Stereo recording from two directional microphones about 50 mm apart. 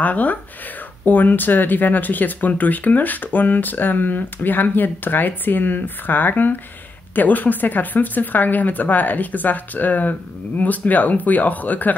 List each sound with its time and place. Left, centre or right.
0.0 s speech: left